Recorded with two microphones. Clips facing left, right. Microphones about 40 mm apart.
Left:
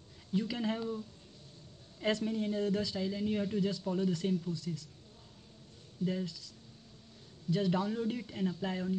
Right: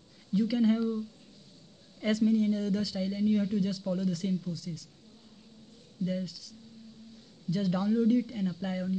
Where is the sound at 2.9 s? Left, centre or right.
Centre.